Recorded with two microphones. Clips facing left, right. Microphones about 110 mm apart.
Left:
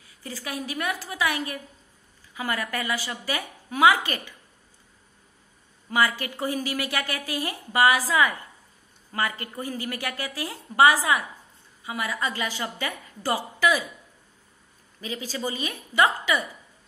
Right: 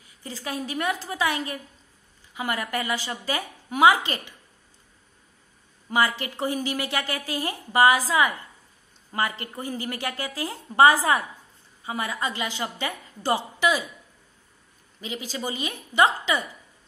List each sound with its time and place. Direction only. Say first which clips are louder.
0.2 s a woman's voice: right 1 dB; 25° right (ahead or behind)
5.9 s a woman's voice: even; 25° right (ahead or behind)
15.2 s a woman's voice: left 1 dB; 20° right (ahead or behind)